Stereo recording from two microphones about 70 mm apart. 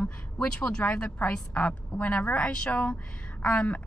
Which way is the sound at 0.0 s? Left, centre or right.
Centre.